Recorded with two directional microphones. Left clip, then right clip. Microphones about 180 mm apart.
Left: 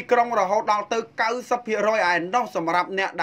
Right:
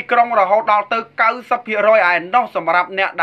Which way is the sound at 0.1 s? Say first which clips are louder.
Right 7 dB; 45° left (ahead or behind).